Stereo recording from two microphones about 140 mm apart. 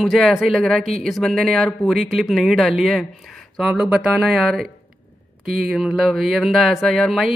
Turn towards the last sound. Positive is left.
turn(degrees=0)  # may be behind; listen again after turning